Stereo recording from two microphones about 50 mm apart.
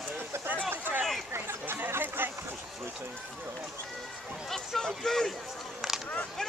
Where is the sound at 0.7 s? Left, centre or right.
Right.